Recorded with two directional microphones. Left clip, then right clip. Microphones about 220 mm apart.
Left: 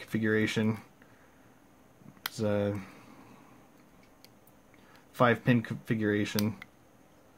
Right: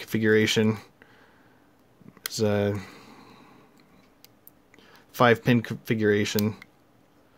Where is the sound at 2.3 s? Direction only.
40° right (ahead or behind).